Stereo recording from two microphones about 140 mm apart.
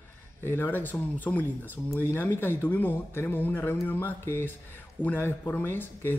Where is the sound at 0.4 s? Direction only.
15° left (ahead or behind).